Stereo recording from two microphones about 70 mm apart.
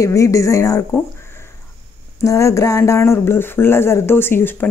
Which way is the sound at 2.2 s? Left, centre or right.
Left.